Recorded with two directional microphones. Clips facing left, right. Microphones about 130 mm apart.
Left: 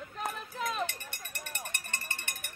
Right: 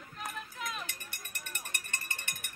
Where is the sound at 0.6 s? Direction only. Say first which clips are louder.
Left 7 dB; 35° left (ahead or behind).